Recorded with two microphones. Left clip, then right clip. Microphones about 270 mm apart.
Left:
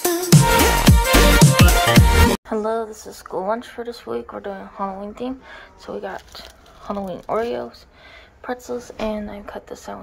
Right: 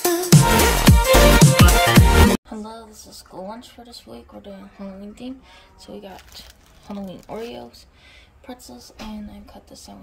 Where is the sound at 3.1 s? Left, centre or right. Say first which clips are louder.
Left 9 dB; left.